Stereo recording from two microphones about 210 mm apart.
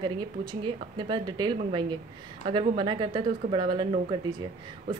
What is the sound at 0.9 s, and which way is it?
A woman's voice, 20° right (ahead or behind).